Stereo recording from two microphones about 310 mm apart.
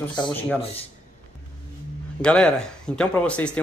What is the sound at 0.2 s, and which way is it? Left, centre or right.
Speech, centre.